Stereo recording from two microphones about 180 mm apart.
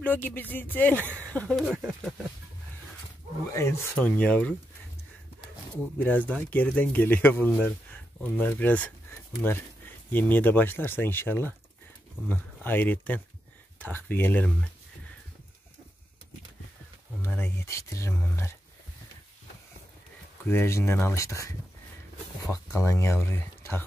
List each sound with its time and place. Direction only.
0.0 s speech: 10° left (ahead or behind)
3.5 s speech: 10° left (ahead or behind)
5.9 s speech: 10° left (ahead or behind)
17.2 s speech: 10° left (ahead or behind)
20.4 s speech: 15° left (ahead or behind)